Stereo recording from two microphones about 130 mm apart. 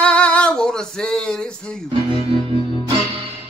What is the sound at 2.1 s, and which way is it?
Music, 45° right (ahead or behind).